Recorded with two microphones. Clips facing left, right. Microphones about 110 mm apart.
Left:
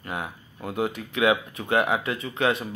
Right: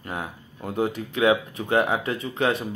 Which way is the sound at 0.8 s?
35° right (ahead or behind).